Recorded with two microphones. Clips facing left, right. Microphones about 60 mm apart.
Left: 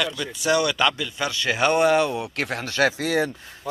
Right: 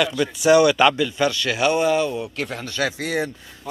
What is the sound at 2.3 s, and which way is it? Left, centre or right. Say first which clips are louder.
Speech: left 2 dB; left.